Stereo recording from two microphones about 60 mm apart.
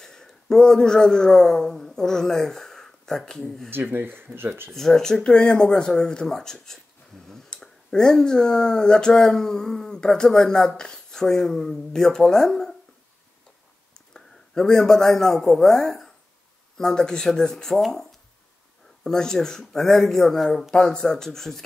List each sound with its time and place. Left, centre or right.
0.0 s a man's voice: centre
3.9 s speech: right
4.6 s speech: centre
13.9 s a man's voice: centre
19.0 s speech: centre